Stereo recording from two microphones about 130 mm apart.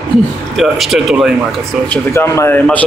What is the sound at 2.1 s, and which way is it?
Speech, 20° left (ahead or behind).